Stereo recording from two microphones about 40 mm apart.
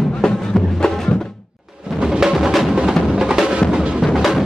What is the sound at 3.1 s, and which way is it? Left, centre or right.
Music, centre.